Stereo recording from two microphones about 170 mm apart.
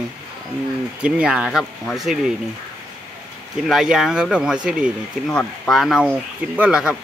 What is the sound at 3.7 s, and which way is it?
Speech, 5° right (ahead or behind).